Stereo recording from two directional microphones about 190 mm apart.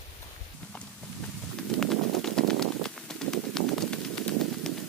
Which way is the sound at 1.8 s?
5° left (ahead or behind).